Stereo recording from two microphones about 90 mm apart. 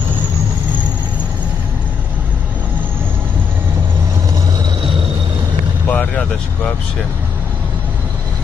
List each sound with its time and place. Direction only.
5.9 s vehicle: 15° left (ahead or behind)